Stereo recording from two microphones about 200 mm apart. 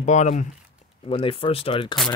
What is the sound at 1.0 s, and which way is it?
Speech, 25° left (ahead or behind).